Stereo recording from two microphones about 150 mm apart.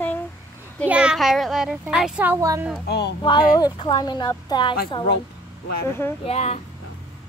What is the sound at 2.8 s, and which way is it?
Speech, 90° left.